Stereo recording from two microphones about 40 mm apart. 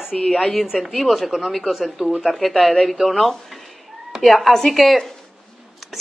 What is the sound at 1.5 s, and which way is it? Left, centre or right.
Speech, centre.